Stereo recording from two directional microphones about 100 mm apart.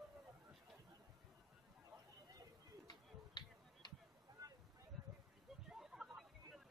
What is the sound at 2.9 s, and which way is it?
Finger snapping, 45° left (ahead or behind).